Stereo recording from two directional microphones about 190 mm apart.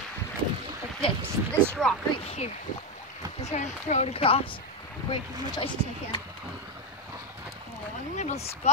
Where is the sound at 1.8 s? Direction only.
5° left (ahead or behind).